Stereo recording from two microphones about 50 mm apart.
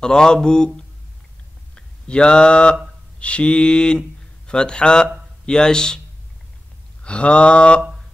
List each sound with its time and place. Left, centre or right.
0.0 s speech: centre
1.8 s speech: centre
3.2 s mantra: left
5.5 s speech: centre
7.0 s mantra: left